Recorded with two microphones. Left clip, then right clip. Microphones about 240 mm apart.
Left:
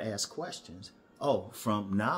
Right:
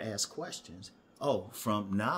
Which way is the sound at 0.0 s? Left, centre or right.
Centre.